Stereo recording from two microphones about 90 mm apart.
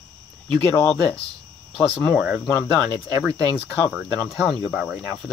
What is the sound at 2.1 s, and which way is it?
Speech, 10° right (ahead or behind).